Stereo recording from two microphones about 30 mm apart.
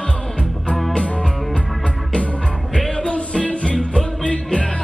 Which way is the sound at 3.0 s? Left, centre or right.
Left.